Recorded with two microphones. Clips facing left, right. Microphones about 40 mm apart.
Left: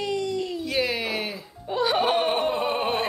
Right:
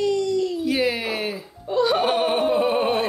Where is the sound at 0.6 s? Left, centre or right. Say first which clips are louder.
Right 4 dB; centre.